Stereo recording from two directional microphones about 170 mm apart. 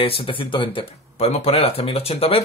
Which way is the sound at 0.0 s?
30° left (ahead or behind).